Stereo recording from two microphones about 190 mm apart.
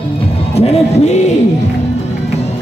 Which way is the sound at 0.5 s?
35° left (ahead or behind).